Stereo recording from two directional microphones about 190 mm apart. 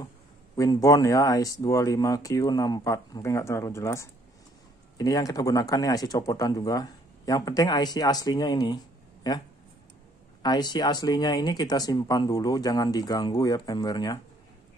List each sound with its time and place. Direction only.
0.6 s speech: 15° left (ahead or behind)